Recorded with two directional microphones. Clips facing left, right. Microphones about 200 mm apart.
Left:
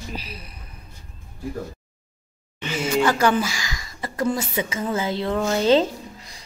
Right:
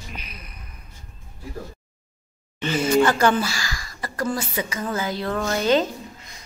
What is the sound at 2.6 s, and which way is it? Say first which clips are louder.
Speech: right 3 dB; 10° left (ahead or behind).